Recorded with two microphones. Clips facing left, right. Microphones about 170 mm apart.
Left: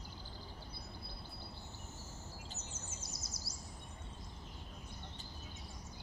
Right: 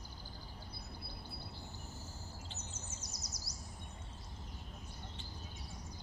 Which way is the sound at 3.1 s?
25° left (ahead or behind).